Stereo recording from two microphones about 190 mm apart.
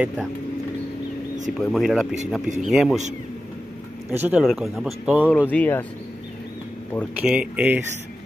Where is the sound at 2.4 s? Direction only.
40° right (ahead or behind).